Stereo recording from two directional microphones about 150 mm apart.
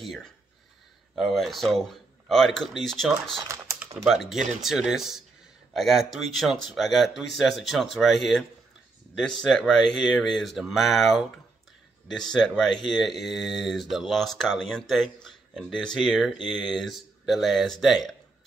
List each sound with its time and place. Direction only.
0.0 s a sound: centre (ahead or behind)
1.3 s speech: centre (ahead or behind)
3.4 s typing: 20° right (ahead or behind)
4.0 s speech: centre (ahead or behind)